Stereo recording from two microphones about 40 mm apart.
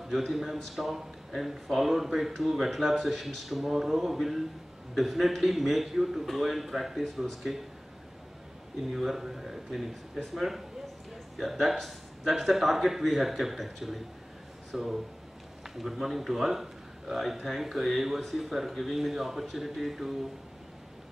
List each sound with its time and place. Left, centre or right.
0.1 s speech: centre
8.9 s speech: centre